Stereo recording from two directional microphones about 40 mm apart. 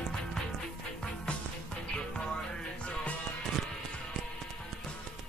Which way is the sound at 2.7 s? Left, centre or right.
Left.